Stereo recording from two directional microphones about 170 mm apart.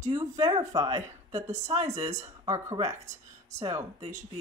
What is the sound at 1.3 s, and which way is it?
Speech, 40° right (ahead or behind).